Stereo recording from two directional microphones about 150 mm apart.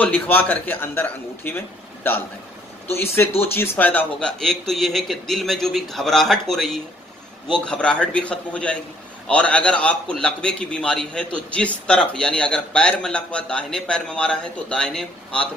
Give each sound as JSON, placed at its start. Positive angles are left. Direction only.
{"t": 0.0, "sound": "a man's voice", "side_deg": 10}
{"t": 2.9, "sound": "a man's voice", "side_deg": 15}